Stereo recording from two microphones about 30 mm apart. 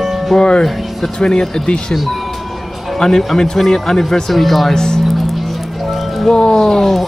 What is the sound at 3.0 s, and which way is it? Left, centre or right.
Speech, centre.